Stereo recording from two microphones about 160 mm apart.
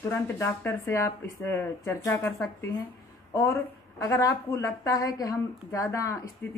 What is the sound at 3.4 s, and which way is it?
A woman's voice, 15° left (ahead or behind).